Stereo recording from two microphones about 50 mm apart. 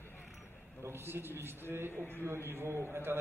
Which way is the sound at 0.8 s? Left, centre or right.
Right.